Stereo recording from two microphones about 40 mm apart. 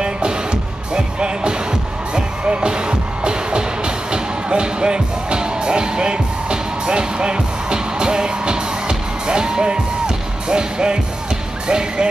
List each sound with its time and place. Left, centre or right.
0.9 s music: right
11.6 s speech: right